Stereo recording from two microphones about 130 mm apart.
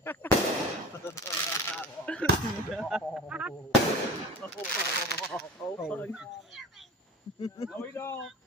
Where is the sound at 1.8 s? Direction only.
10° left (ahead or behind).